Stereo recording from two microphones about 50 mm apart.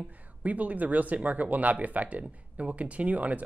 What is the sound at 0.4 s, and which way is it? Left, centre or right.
Speech, right.